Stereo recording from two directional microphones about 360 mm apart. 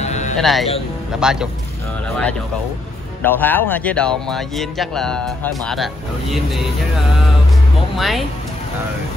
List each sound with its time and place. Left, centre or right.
0.0 s music: centre
0.4 s speech: centre
3.3 s speech: centre
7.9 s speech: centre